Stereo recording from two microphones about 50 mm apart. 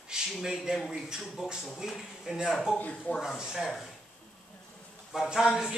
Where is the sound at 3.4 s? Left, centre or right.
Centre.